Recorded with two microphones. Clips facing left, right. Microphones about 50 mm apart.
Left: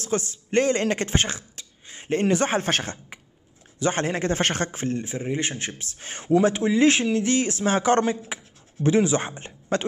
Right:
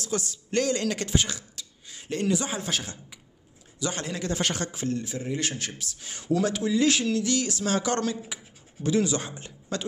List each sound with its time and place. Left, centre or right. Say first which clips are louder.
0.0 s a man's voice: left 4 dB; left